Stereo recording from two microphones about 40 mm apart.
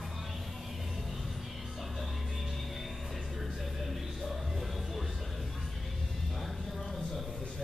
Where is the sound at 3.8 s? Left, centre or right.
Centre.